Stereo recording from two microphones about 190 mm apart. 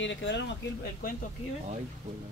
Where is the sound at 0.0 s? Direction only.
75° left (ahead or behind).